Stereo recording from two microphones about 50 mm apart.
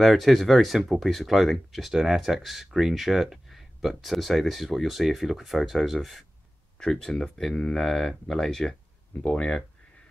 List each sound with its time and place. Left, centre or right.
0.0 s speech: centre
6.8 s speech: centre